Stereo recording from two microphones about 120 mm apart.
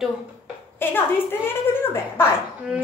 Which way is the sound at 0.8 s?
20° left (ahead or behind).